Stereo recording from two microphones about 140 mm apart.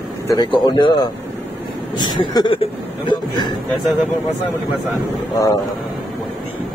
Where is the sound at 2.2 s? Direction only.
35° left (ahead or behind).